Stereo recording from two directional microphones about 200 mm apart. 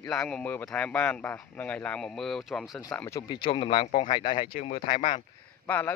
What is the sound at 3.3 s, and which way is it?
Speech, 25° left (ahead or behind).